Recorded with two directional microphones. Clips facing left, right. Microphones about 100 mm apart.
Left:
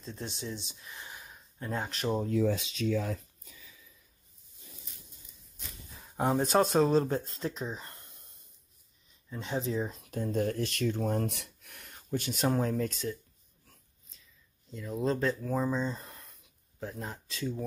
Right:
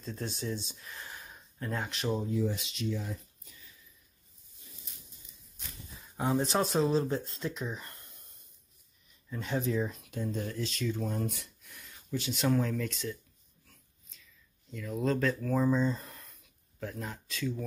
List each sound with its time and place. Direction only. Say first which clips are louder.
0.0 s speech: right 2 dB; 20° left (ahead or behind)
1.6 s speech: left 1 dB; 30° left (ahead or behind)
2.2 s speech: left 4 dB; 90° left
6.3 s speech: left 3 dB; 50° left (ahead or behind); by 8.2 s 25° left (ahead or behind)
9.3 s speech: right 1 dB; 25° left (ahead or behind)
10.2 s speech: left 5 dB; 50° left (ahead or behind)
14.7 s speech: even; 30° left (ahead or behind)
15.4 s speech: right 2 dB; 5° left (ahead or behind)
15.7 s speech: right 4 dB; 20° left (ahead or behind)